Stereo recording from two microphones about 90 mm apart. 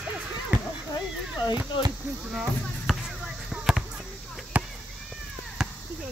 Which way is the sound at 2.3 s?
5° right (ahead or behind).